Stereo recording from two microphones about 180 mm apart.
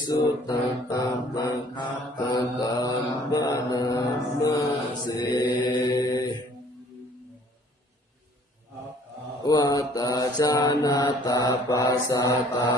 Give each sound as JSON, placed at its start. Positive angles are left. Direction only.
{"t": 0.2, "sound": "mantra", "side_deg": 25}
{"t": 9.4, "sound": "mantra", "side_deg": 20}